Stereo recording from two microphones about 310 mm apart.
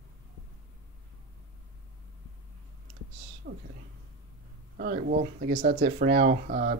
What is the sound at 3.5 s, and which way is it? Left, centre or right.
Speech, right.